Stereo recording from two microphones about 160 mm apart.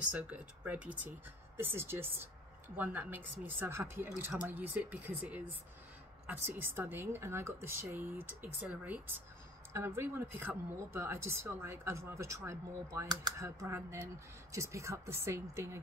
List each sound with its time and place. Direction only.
0.1 s speech: 5° right (ahead or behind)